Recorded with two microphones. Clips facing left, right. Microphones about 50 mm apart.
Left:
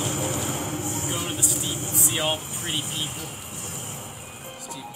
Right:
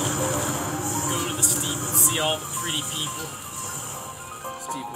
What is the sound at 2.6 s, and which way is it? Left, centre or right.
Music, left.